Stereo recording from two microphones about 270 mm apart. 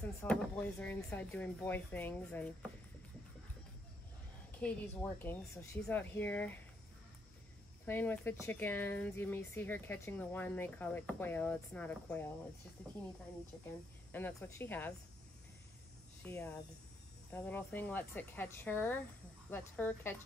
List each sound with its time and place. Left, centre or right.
0.0 s speech: centre
4.6 s speech: centre
7.8 s speech: centre
14.1 s speech: centre
16.2 s speech: centre